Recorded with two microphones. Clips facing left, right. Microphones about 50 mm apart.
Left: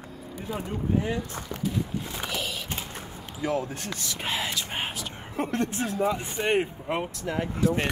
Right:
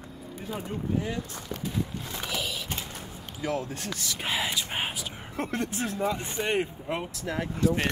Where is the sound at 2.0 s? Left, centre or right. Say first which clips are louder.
Left 1 dB; centre.